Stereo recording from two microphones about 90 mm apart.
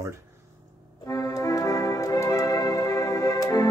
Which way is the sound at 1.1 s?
40° left (ahead or behind).